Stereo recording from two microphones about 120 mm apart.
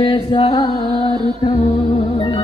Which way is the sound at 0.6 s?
45° left (ahead or behind).